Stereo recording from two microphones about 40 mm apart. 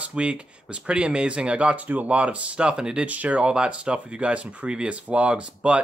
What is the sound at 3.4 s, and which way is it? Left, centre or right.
Speech, right.